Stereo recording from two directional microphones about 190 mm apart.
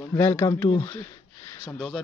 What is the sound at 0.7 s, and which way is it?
Speech, 30° left (ahead or behind).